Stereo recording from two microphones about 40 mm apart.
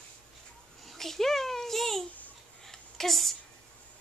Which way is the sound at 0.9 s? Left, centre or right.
Centre.